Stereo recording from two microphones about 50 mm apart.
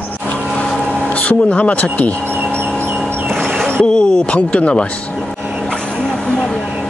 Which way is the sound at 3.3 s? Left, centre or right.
Centre.